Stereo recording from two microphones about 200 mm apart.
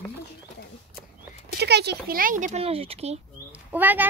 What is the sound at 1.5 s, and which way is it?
Speech, 55° right (ahead or behind).